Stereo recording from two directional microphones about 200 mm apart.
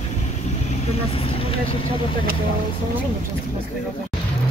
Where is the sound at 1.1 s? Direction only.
30° left (ahead or behind).